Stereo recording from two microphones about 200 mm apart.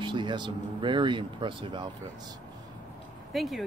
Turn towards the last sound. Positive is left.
turn(degrees=0)  # may be behind; listen again after turning